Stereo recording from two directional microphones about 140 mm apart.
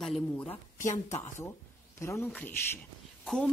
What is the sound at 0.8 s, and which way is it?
Speech, 60° left (ahead or behind).